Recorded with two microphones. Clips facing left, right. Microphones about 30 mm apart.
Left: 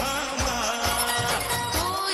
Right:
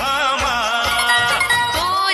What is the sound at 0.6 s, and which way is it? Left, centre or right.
Music, right.